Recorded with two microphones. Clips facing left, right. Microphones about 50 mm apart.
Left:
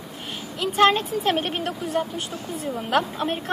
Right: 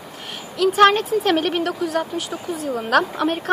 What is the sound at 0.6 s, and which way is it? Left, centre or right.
A woman's voice, right.